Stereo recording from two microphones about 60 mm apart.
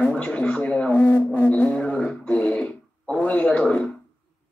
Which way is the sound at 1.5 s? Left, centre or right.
Left.